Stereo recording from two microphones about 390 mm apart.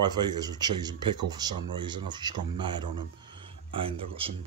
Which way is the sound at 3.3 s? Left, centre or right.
Centre.